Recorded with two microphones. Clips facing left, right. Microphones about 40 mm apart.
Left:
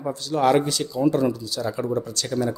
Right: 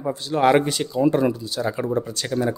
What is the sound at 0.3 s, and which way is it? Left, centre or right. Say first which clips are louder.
A man's voice: right 2 dB; right.